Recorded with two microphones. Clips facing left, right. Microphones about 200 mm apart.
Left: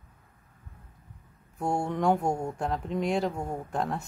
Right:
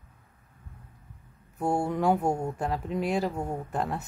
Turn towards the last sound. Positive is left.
turn(degrees=0)  # may be behind; listen again after turning